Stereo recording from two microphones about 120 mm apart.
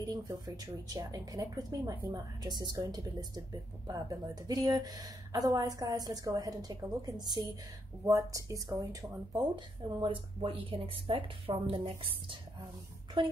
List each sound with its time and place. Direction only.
0.0 s a woman's voice: 30° right (ahead or behind)
10.0 s speech: 45° right (ahead or behind)
13.2 s a woman's voice: 40° right (ahead or behind)